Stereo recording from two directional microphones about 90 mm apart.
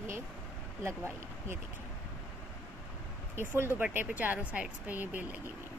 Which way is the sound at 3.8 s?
15° right (ahead or behind).